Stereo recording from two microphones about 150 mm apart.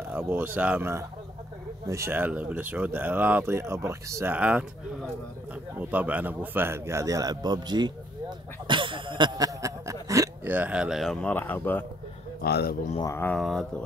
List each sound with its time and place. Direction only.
0.1 s speech: 10° right (ahead or behind)
5.8 s speech: 10° right (ahead or behind); by 7.9 s 30° right (ahead or behind)
8.6 s cough: 35° right (ahead or behind)
10.0 s hiccup: 20° right (ahead or behind); by 11.2 s centre (ahead or behind)
11.2 s speech: 10° left (ahead or behind)
12.4 s a man's voice: 90° left
13.0 s speech: 15° left (ahead or behind)
13.4 s speech: centre (ahead or behind)